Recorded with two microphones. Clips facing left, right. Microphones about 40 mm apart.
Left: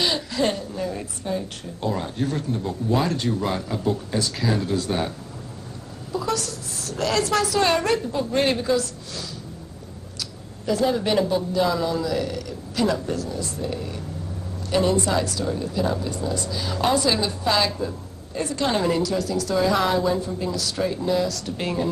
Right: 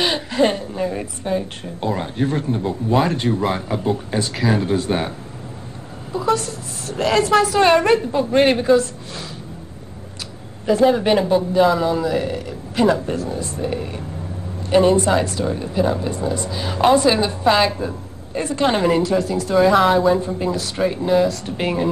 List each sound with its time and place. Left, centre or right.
0.0 s a woman's voice: right
6.1 s a woman's voice: right
10.7 s a woman's voice: right